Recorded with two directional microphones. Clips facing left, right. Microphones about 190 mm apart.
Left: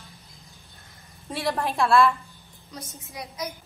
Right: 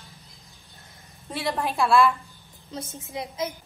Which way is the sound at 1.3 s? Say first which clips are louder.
Left 1 dB; centre (ahead or behind).